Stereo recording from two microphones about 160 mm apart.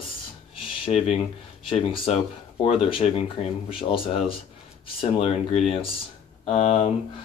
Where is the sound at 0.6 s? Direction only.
35° left (ahead or behind).